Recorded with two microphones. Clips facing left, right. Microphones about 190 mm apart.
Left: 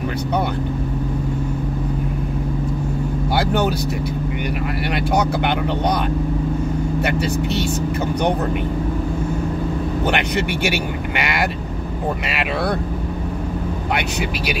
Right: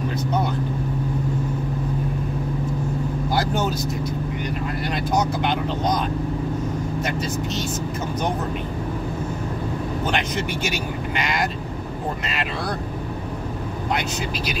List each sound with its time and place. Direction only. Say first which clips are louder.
3.3 s speech: left 4 dB; 65° left (ahead or behind)
4.9 s speech: left 3 dB; 65° left (ahead or behind)
7.0 s speech: left 5 dB; 65° left (ahead or behind)
10.0 s speech: left 4 dB; 65° left (ahead or behind)